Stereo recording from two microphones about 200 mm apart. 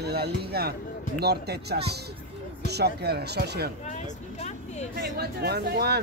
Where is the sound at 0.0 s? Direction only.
55° right (ahead or behind).